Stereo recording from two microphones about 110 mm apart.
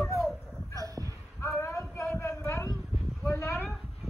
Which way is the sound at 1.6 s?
25° left (ahead or behind).